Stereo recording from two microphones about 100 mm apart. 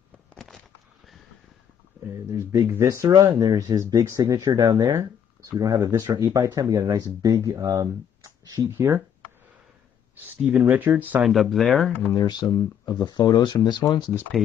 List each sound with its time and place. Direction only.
0.3 s a sound: 5° left (ahead or behind)
2.3 s speech: 30° right (ahead or behind)
10.4 s speech: 5° right (ahead or behind)
11.0 s speech: 15° right (ahead or behind)
11.2 s speech: centre (ahead or behind)
12.2 s speech: 40° left (ahead or behind)
14.3 s speech: centre (ahead or behind)